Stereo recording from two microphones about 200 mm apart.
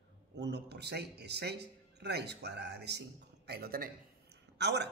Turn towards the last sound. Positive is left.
turn(degrees=-55)  # may be behind; listen again after turning